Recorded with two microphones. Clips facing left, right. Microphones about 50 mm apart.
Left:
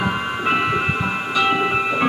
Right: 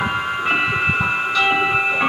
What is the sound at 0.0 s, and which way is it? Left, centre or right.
Music, centre.